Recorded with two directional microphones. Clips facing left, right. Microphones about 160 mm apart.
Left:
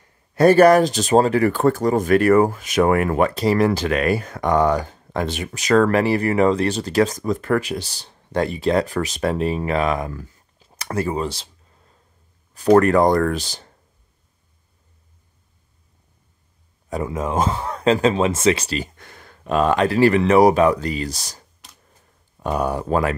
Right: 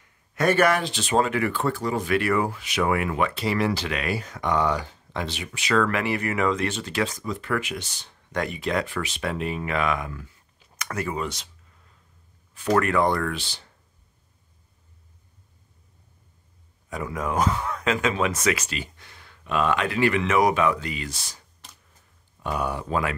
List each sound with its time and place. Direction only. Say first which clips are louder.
0.0 s speech: left 9 dB; 35° left (ahead or behind)
16.9 s speech: left 4 dB; 25° left (ahead or behind)
18.9 s speech: left 6 dB; 50° left (ahead or behind)